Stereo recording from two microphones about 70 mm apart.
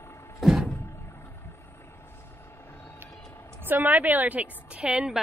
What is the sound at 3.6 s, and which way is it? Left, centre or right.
A woman's voice, right.